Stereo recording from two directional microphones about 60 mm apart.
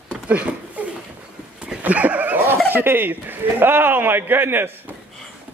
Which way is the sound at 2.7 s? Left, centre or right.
Right.